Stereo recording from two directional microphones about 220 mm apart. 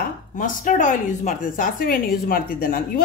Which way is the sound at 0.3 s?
35° left (ahead or behind).